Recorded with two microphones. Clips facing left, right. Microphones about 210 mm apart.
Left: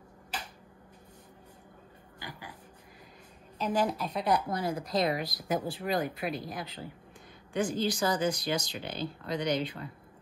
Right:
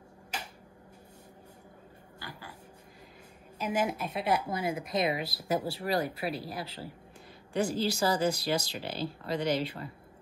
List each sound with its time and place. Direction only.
3.5 s speech: 10° right (ahead or behind)
4.5 s speech: 25° right (ahead or behind)
5.4 s speech: 10° right (ahead or behind)